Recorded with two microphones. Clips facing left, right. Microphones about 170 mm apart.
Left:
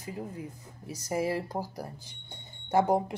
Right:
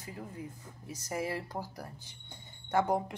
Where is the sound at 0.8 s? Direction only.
35° left (ahead or behind).